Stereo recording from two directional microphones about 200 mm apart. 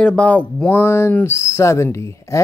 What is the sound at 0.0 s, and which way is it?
Speech, 5° left (ahead or behind).